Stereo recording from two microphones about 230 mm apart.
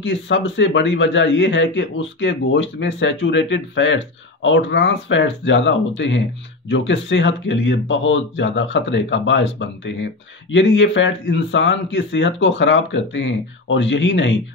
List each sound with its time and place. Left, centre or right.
0.0 s a man's voice: left